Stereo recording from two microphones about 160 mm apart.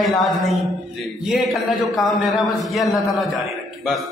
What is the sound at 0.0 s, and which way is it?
A man's voice, centre (ahead or behind).